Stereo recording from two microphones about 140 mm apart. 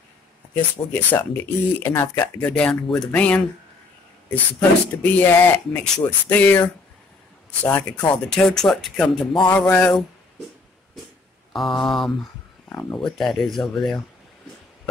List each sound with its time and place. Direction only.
0.9 s speech: 15° left (ahead or behind)
9.7 s speech: 15° left (ahead or behind)
11.5 s speech: centre (ahead or behind)
12.6 s speech: 20° left (ahead or behind)
13.0 s speech: centre (ahead or behind)